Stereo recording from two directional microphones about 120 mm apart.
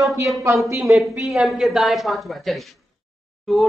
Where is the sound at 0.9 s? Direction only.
Centre (ahead or behind).